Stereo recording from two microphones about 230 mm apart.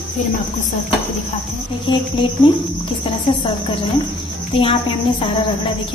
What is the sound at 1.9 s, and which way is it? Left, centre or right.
Speech, left.